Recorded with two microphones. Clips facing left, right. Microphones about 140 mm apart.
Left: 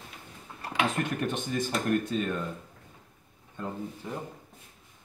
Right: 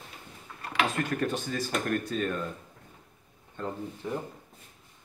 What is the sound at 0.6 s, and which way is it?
Speech, 25° left (ahead or behind).